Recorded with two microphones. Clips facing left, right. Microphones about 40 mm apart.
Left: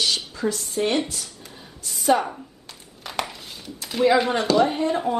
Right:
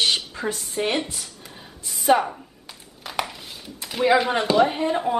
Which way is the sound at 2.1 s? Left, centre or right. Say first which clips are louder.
Right 1 dB; right.